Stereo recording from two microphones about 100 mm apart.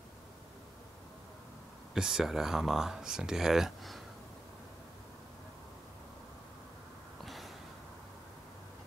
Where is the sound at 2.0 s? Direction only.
5° right (ahead or behind).